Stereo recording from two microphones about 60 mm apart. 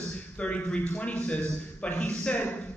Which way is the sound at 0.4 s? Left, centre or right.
Left.